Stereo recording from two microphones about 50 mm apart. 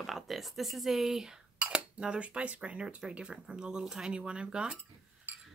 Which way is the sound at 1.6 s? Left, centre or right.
Centre.